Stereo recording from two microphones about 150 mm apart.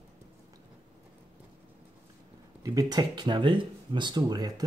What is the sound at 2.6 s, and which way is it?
Speech, 25° right (ahead or behind).